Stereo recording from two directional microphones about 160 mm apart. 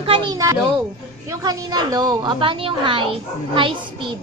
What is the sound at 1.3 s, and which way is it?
A woman's voice, 25° right (ahead or behind).